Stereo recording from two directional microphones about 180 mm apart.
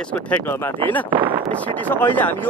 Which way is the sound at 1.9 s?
10° left (ahead or behind).